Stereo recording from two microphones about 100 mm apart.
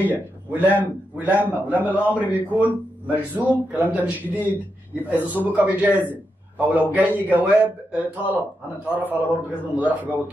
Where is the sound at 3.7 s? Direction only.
15° right (ahead or behind).